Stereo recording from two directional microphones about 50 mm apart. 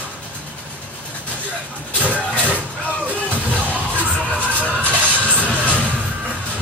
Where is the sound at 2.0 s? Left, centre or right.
Right.